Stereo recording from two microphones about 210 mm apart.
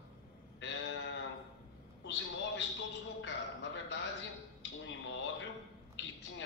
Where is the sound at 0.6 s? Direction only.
60° left (ahead or behind).